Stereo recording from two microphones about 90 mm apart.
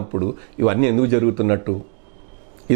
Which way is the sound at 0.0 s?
20° right (ahead or behind).